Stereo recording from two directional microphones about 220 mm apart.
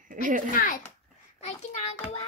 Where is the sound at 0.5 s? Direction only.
40° left (ahead or behind).